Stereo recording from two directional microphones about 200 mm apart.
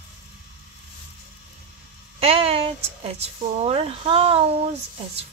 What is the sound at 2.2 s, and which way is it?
Speech, 30° right (ahead or behind).